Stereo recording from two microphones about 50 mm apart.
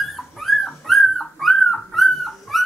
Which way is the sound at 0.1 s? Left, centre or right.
Centre.